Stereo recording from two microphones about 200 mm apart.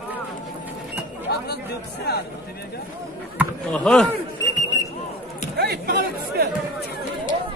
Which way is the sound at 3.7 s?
5° left (ahead or behind).